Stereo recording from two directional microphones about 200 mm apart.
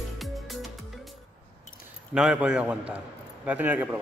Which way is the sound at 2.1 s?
5° right (ahead or behind).